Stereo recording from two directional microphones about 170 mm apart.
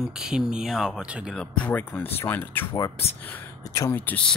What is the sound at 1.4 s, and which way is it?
Speech, 10° left (ahead or behind).